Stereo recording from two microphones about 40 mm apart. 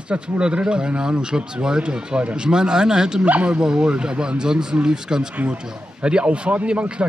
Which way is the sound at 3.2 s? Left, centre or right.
Right.